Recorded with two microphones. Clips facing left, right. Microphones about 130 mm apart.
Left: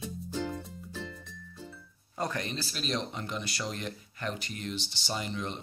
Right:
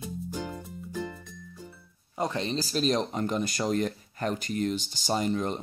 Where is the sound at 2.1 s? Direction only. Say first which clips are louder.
Right 5 dB; 20° right (ahead or behind).